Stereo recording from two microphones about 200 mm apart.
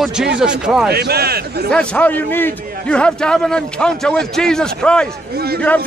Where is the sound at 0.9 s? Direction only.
50° right (ahead or behind).